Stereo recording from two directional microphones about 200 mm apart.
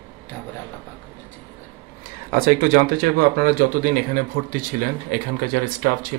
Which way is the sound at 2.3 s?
45° right (ahead or behind).